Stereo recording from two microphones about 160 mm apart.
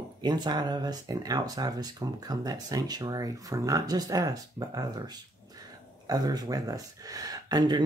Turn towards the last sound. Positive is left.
turn(degrees=-25)  # may be behind; listen again after turning